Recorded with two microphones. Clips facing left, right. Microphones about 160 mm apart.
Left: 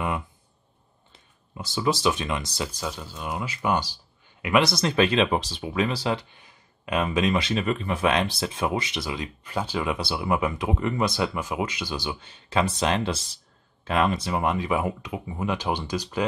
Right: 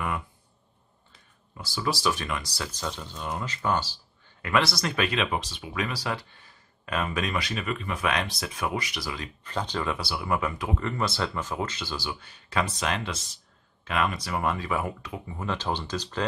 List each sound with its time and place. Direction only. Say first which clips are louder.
1.6 s speech: left 4 dB; 20° left (ahead or behind)
9.9 s speech: left 3 dB; 20° left (ahead or behind)